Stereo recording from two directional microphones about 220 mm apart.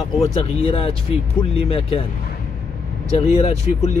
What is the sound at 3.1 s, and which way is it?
Speech, 30° left (ahead or behind).